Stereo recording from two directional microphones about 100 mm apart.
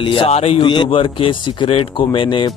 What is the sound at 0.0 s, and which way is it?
Speech, 60° left (ahead or behind).